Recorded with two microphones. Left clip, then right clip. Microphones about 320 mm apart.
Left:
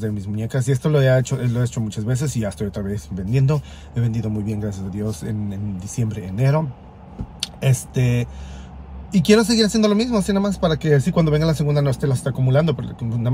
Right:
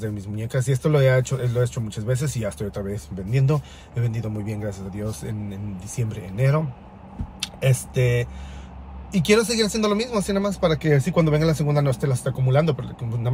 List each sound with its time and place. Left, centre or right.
0.0 s a man's voice: centre